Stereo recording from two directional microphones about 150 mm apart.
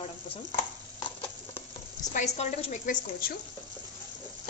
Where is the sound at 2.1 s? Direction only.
55° left (ahead or behind).